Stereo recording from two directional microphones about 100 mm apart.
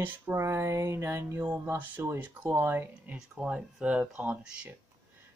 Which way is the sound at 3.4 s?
10° right (ahead or behind).